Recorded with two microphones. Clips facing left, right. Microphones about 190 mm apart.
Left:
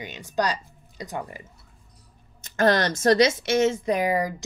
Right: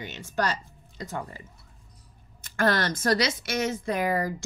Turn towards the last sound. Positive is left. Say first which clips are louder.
# left 3 dB
turn(degrees=15)  # may be behind; listen again after turning